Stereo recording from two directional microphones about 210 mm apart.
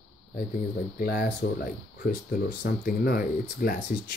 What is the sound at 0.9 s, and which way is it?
Speech, 45° left (ahead or behind).